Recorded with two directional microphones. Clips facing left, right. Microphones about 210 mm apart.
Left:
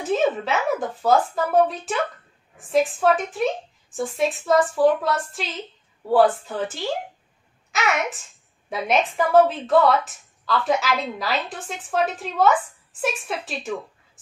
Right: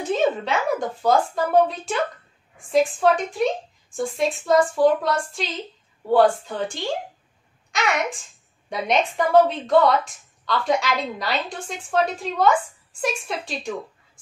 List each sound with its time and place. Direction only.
0.0 s a woman's voice: 5° left (ahead or behind)